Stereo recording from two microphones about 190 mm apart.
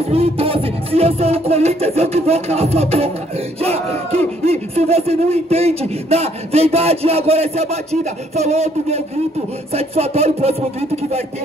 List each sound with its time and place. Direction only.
0.0 s speech: 30° right (ahead or behind)